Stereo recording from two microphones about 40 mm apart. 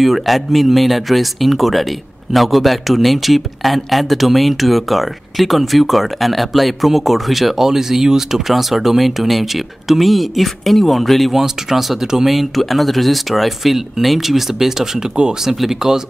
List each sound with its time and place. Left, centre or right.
0.0 s speech: centre